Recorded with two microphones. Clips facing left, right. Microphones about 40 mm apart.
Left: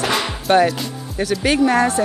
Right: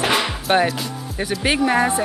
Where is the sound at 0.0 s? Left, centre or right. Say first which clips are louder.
Right 1 dB; centre.